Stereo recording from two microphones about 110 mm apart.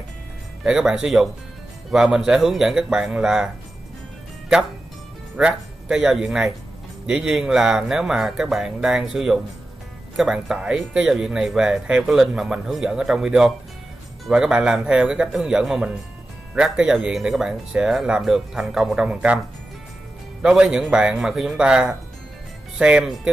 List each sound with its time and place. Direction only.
0.7 s speech: 5° right (ahead or behind)
5.4 s speech: 5° right (ahead or behind)
20.4 s speech: 5° right (ahead or behind)